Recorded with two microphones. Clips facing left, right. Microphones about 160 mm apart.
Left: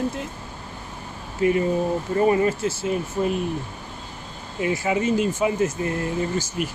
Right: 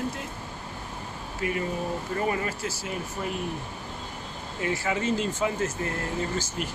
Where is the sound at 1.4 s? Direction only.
25° left (ahead or behind).